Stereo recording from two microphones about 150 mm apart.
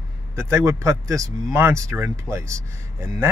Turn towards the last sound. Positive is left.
turn(degrees=-20)  # may be behind; listen again after turning